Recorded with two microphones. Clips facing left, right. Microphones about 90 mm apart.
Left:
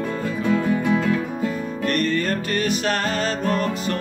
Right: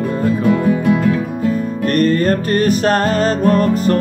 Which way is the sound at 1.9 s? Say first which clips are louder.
Right 8 dB; 45° right (ahead or behind).